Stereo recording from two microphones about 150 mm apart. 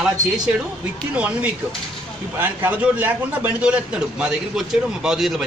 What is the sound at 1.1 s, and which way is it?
A man's voice, 10° right (ahead or behind).